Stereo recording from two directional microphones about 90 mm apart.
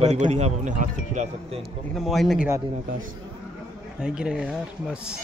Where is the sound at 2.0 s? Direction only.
Centre (ahead or behind).